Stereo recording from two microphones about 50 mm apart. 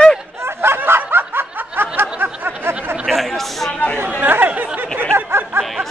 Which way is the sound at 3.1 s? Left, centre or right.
Centre.